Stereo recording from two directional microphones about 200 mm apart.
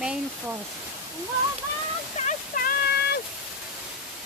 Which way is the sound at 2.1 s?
40° left (ahead or behind).